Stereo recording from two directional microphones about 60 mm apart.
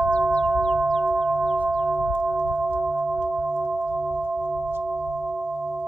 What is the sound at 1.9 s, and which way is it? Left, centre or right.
Chirp tone, centre.